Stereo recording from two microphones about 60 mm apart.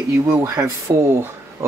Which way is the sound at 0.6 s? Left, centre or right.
Right.